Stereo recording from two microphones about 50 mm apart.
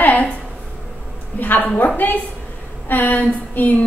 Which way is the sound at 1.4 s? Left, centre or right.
Left.